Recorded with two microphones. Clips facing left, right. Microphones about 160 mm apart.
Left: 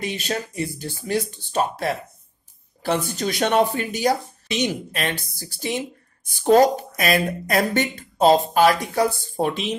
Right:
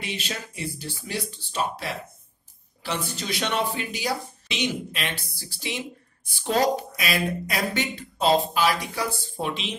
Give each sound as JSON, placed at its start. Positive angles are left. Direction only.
{"t": 0.0, "sound": "speech", "side_deg": 45}